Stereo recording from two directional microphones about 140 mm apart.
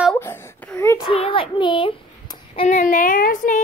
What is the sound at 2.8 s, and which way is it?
Speech, 75° left (ahead or behind).